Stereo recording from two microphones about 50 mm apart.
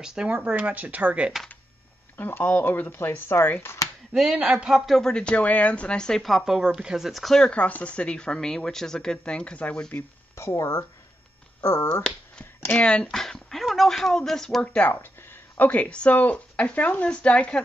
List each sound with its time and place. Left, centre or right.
0.0 s speech: centre
2.1 s speech: left
3.6 s speech: left
4.1 s speech: centre
4.9 s speech: centre
6.2 s speech: centre
7.5 s speech: left
10.3 s speech: left
11.9 s speech: centre
13.0 s speech: centre
14.6 s speech: left
15.5 s speech: left